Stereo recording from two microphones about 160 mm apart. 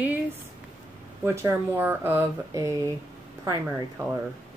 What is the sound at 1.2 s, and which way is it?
Speech, 10° right (ahead or behind).